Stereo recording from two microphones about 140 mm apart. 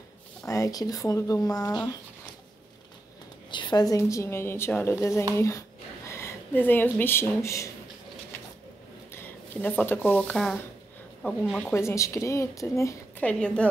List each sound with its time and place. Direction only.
0.5 s a woman's voice: 25° left (ahead or behind)
3.4 s a woman's voice: 35° left (ahead or behind)
9.1 s speech: 15° left (ahead or behind)
11.4 s speech: 5° right (ahead or behind)
11.7 s a woman's voice: 20° left (ahead or behind)
13.2 s a woman's voice: 10° left (ahead or behind)